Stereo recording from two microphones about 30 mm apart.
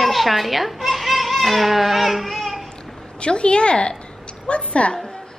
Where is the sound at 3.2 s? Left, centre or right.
Left.